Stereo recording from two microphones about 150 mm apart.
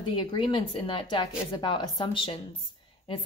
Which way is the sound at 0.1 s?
30° left (ahead or behind).